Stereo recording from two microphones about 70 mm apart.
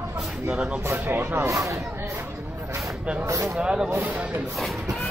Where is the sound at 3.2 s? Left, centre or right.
Right.